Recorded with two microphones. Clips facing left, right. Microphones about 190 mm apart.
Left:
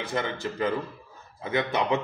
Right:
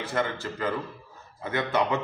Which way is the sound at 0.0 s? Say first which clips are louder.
Right 1 dB; 15° left (ahead or behind).